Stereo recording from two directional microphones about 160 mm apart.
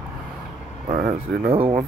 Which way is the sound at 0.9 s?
60° right (ahead or behind).